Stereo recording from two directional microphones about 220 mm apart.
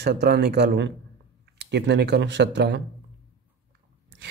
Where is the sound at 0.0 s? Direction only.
45° right (ahead or behind).